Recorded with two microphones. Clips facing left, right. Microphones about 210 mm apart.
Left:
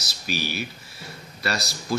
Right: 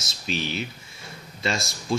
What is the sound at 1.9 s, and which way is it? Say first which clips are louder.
Speech: right 1 dB; 25° right (ahead or behind).